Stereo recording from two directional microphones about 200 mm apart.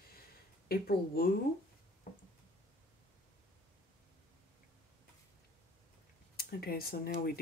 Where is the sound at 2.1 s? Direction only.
35° left (ahead or behind).